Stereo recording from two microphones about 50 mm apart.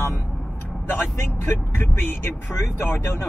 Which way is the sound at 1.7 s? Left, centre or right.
Left.